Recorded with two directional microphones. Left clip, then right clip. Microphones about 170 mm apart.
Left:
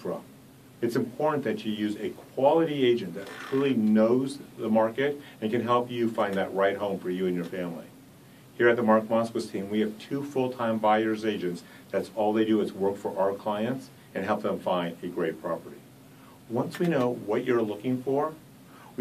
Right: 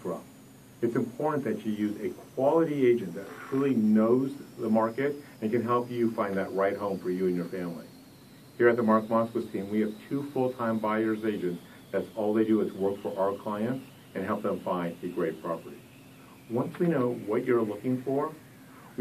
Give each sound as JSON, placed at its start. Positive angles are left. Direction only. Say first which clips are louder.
{"t": 0.7, "sound": "speech", "louder": "left 1 dB", "side_deg": 20}
{"t": 16.9, "sound": "speech", "louder": "left 3 dB", "side_deg": 25}